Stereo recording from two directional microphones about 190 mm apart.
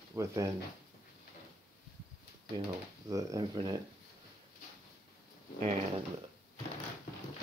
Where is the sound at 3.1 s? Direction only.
15° right (ahead or behind).